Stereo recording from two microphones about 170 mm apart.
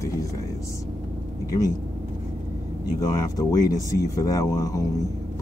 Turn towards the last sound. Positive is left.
turn(degrees=20)  # may be behind; listen again after turning